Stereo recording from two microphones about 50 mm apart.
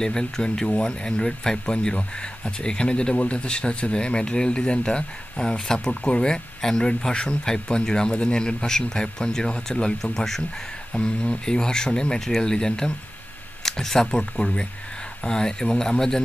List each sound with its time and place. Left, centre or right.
0.0 s speech: centre
10.9 s speech: centre